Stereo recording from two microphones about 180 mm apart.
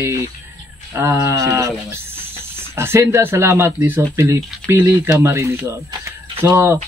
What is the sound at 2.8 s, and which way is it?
Speech, 15° right (ahead or behind).